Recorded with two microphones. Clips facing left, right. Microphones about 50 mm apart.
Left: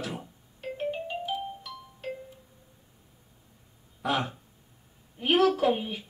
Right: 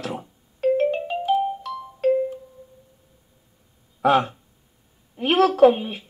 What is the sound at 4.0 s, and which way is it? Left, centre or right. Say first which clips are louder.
Speech: right 11 dB; right.